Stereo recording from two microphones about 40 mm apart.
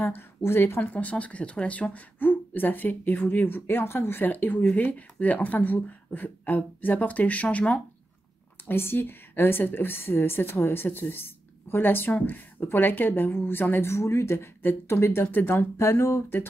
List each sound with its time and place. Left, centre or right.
0.0 s speech: left
0.7 s speech: left
2.1 s speech: left
4.2 s speech: left
8.6 s a woman's voice: left